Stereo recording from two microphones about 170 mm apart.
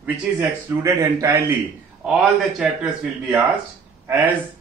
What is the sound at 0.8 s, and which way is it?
Speech, 20° right (ahead or behind).